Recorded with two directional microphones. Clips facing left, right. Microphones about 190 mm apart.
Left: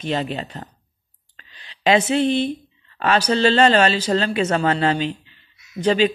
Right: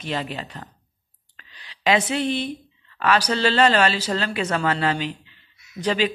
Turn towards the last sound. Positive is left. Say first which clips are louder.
# left 5 dB
turn(degrees=25)  # may be behind; listen again after turning